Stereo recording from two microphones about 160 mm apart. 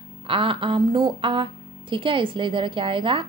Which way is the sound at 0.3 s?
35° right (ahead or behind).